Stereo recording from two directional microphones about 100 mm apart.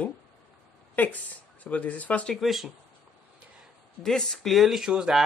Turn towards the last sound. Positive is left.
turn(degrees=-5)  # may be behind; listen again after turning